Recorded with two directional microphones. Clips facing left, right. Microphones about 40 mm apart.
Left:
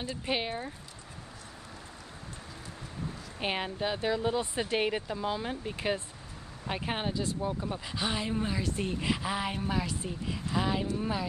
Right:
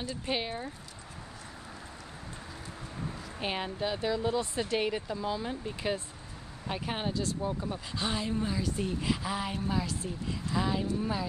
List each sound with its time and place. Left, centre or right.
0.0 s speech: centre
3.3 s speech: centre